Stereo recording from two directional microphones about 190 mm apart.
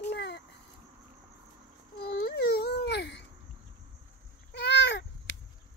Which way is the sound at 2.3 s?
55° left (ahead or behind).